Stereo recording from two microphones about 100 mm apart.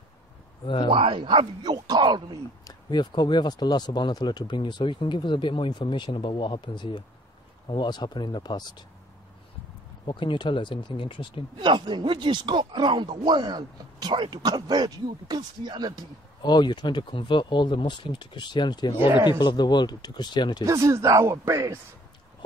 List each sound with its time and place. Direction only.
0.8 s speech: 60° right (ahead or behind)
2.6 s speech: 45° left (ahead or behind)
10.0 s speech: 55° left (ahead or behind)
11.6 s speech: 50° right (ahead or behind)
16.4 s speech: 45° left (ahead or behind)
18.9 s speech: 20° right (ahead or behind)
19.4 s speech: 45° left (ahead or behind)
20.6 s speech: 30° right (ahead or behind)